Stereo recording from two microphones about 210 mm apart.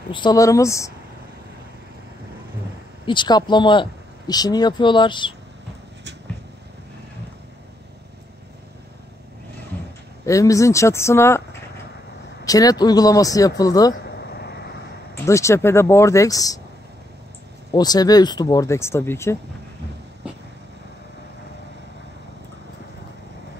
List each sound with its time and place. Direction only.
0.1 s speech: 20° left (ahead or behind)
3.1 s speech: 20° left (ahead or behind)
10.2 s speech: 15° left (ahead or behind)
12.4 s speech: 15° left (ahead or behind)
14.0 s vehicle: 55° left (ahead or behind)
15.2 s speech: 15° left (ahead or behind)
17.7 s speech: 20° left (ahead or behind)